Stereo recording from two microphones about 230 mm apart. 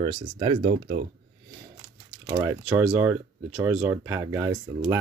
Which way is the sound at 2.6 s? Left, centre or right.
Centre.